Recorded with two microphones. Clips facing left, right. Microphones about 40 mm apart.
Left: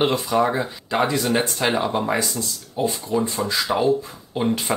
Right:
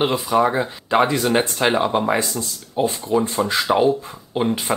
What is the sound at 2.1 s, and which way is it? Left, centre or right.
Speech, right.